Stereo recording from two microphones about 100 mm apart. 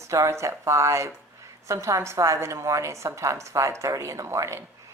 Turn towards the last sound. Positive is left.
turn(degrees=-30)  # may be behind; listen again after turning